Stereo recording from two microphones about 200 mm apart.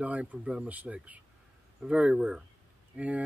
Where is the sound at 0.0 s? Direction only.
5° right (ahead or behind).